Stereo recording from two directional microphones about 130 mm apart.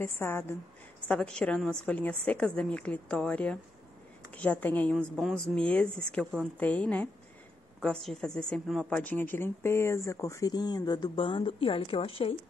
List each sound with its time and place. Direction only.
0.0 s a woman's voice: 20° left (ahead or behind)
1.0 s a woman's voice: 5° left (ahead or behind)
4.9 s a woman's voice: centre (ahead or behind)
8.9 s speech: 10° left (ahead or behind); by 12.4 s 45° left (ahead or behind)